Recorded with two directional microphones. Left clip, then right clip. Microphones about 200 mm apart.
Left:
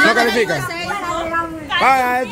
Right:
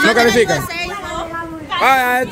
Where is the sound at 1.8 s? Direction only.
20° right (ahead or behind).